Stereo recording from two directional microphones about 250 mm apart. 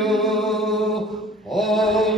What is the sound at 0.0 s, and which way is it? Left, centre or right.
Mantra, centre.